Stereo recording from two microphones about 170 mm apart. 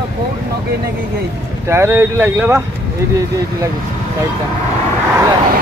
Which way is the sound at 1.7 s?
15° right (ahead or behind).